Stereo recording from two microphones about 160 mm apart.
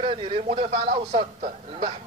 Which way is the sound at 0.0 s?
35° right (ahead or behind).